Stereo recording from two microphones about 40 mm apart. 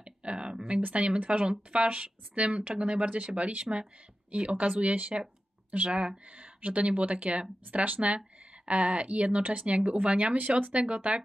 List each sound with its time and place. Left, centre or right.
0.0 s a sound: right
0.9 s speech: right
5.9 s speech: right